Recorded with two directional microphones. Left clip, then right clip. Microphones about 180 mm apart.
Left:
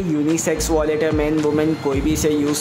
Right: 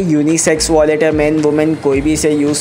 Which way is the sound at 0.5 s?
15° right (ahead or behind).